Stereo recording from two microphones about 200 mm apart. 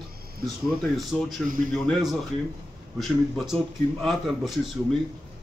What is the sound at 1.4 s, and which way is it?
Speech, 45° right (ahead or behind).